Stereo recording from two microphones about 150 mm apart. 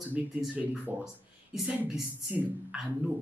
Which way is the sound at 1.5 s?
5° right (ahead or behind).